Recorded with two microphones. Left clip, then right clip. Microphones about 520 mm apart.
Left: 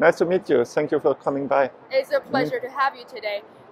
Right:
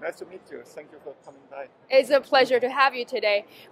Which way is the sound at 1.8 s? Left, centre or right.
Right.